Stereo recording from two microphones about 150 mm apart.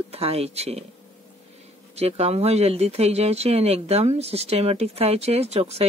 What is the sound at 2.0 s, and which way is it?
Speech, 45° right (ahead or behind).